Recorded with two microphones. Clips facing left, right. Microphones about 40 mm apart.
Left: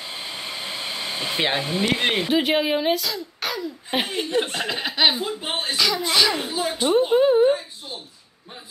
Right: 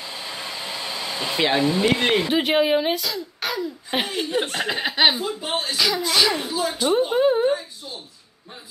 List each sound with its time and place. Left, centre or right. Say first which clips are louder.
0.0 s a sound: even; left
1.2 s speech: right 4 dB; centre
2.3 s speech: right 1 dB; centre
5.1 s a woman's voice: right 1 dB; centre
5.8 s speech: even; centre
6.4 s a woman's voice: even; left
6.9 s a sound: left 2 dB; centre